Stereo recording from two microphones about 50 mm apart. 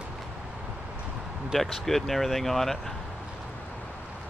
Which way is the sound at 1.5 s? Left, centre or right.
Centre.